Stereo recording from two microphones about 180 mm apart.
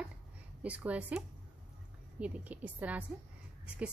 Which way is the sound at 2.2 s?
10° right (ahead or behind).